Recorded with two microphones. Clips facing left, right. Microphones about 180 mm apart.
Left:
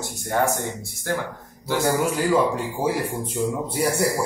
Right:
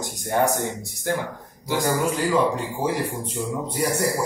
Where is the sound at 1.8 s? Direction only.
10° left (ahead or behind).